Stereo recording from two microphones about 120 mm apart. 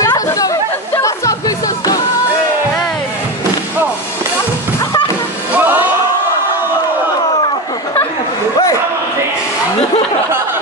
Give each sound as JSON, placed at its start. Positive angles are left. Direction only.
{"t": 0.0, "sound": "chatter", "side_deg": 30}
{"t": 0.9, "sound": "a sound", "side_deg": 25}
{"t": 4.7, "sound": "music", "side_deg": 25}
{"t": 5.6, "sound": "music", "side_deg": -15}